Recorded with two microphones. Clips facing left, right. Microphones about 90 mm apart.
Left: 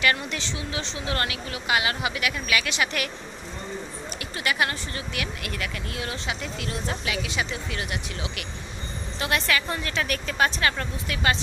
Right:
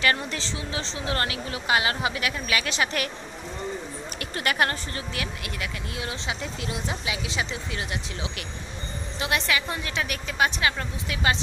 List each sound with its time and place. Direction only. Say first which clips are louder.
0.0 s speech: even; 35° right (ahead or behind)
4.2 s speech: right 1 dB; 45° right (ahead or behind); by 11.3 s 20° right (ahead or behind)